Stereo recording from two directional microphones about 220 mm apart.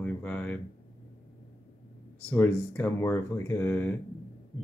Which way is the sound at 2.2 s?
10° left (ahead or behind).